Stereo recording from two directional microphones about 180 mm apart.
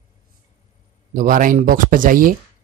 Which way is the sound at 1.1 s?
50° right (ahead or behind).